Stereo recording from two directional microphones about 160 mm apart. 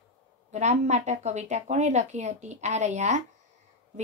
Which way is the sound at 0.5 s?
45° right (ahead or behind).